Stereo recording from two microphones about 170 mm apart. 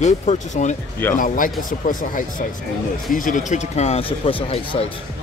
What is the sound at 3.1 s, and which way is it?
Speech, 50° left (ahead or behind).